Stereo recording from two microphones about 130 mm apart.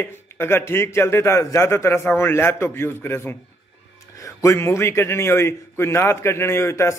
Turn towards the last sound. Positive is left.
turn(degrees=20)  # may be behind; listen again after turning